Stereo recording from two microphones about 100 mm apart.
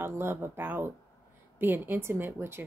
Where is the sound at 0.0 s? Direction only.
25° right (ahead or behind).